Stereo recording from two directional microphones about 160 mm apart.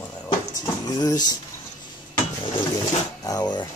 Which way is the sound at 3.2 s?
25° left (ahead or behind).